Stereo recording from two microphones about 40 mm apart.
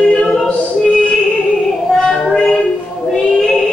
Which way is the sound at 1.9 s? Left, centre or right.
Centre.